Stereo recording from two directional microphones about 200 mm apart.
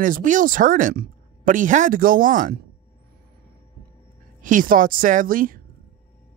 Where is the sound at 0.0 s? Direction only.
40° right (ahead or behind).